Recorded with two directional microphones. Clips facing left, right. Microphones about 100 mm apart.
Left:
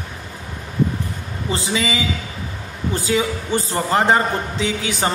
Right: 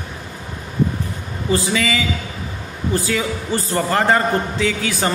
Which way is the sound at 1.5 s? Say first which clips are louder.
Right 3 dB; 20° left (ahead or behind).